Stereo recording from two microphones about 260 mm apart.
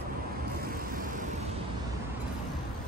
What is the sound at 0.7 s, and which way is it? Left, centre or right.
Vehicle, right.